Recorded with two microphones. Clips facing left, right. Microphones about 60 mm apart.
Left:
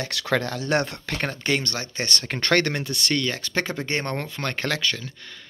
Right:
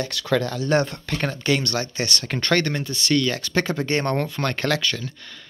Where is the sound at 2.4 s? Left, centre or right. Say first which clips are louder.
Even; left.